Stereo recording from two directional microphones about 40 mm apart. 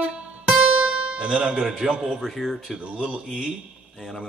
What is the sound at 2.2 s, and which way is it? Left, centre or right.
Speech, centre.